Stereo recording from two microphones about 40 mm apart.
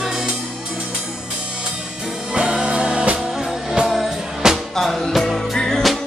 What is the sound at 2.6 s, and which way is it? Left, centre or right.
Music, right.